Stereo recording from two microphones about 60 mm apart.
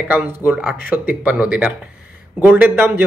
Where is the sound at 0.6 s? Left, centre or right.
Right.